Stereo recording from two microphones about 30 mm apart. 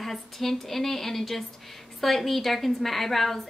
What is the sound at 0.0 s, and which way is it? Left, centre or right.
A woman's voice, centre.